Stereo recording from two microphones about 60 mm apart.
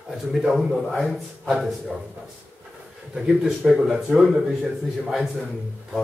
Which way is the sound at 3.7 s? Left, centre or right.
Centre.